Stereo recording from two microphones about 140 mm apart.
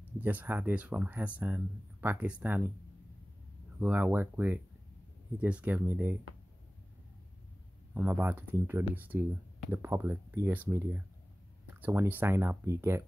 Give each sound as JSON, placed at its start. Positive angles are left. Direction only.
{"t": 0.0, "sound": "speech", "side_deg": -10}
{"t": 3.8, "sound": "speech", "side_deg": -10}
{"t": 7.9, "sound": "speech", "side_deg": -15}